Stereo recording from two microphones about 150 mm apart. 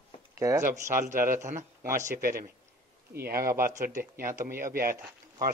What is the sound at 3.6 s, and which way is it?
Speech, 65° right (ahead or behind).